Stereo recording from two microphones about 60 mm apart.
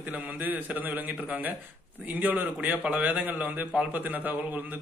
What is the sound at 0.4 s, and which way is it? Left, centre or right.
Speech, right.